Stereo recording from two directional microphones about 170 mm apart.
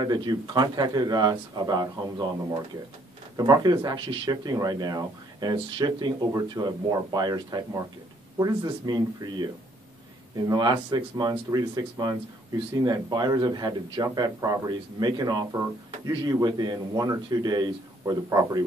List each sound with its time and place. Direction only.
0.0 s speech: 25° right (ahead or behind)
10.5 s speech: 25° right (ahead or behind)